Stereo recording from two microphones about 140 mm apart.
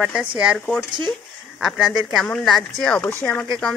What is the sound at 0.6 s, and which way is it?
Speech, 10° left (ahead or behind).